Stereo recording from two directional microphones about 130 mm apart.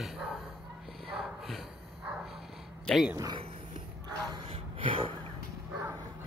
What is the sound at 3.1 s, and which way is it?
Speech, 30° right (ahead or behind).